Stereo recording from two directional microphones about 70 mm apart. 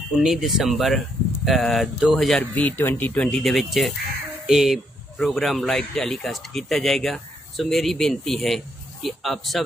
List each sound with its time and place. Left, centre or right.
0.1 s speech: centre
2.5 s speech: left
3.2 s speech: centre